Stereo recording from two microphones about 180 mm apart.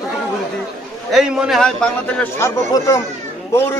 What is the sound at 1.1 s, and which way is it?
A man's voice, 5° right (ahead or behind).